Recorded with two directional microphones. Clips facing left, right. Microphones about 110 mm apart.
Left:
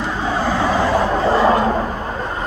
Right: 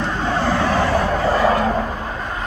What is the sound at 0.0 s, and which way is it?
Vehicle, 10° left (ahead or behind).